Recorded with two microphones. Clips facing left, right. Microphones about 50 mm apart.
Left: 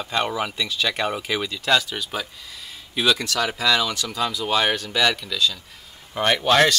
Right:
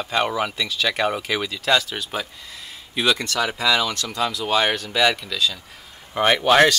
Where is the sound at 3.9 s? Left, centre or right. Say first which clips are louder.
Right 1 dB; centre.